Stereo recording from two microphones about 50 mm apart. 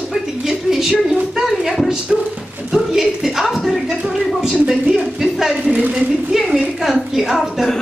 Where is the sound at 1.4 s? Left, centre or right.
Centre.